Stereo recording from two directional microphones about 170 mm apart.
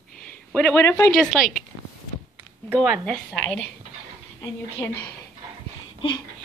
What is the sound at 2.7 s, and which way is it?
Speech, centre (ahead or behind).